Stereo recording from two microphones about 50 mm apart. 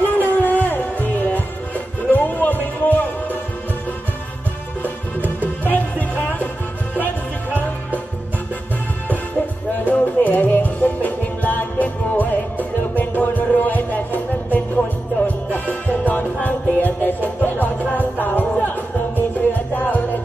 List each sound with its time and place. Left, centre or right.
0.0 s music: left
4.8 s music: left
9.8 s music: left
19.7 s music: left